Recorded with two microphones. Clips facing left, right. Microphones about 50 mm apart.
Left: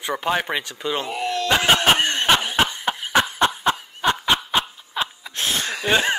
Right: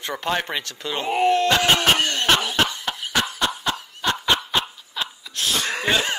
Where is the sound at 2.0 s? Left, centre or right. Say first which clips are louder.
Left 1 dB; left.